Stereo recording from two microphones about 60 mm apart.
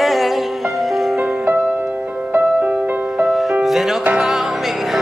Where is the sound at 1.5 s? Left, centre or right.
Right.